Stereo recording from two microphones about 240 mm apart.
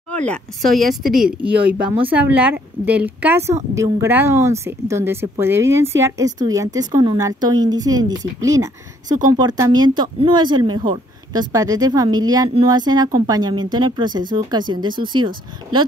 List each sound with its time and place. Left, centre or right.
0.3 s a woman's voice: centre